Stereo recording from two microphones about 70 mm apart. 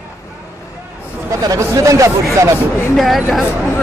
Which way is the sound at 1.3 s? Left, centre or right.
Right.